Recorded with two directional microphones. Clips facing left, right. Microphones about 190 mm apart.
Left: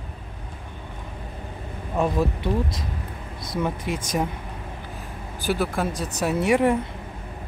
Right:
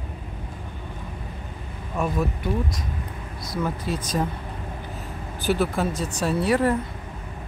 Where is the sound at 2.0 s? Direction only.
30° left (ahead or behind).